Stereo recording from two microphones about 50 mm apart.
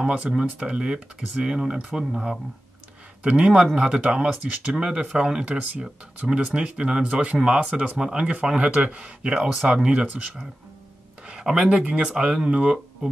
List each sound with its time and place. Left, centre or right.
0.0 s speech: centre
11.2 s a sound: centre
12.0 s speech: centre